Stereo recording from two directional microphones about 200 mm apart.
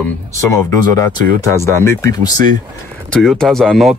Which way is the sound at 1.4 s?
15° left (ahead or behind).